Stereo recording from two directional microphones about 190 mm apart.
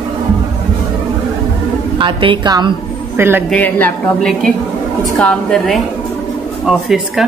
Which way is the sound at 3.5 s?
10° left (ahead or behind).